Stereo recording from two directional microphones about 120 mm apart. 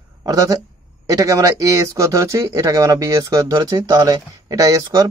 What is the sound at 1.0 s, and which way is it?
Speech, 30° right (ahead or behind).